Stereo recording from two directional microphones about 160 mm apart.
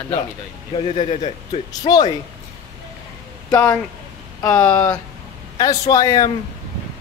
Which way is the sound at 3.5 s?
20° left (ahead or behind).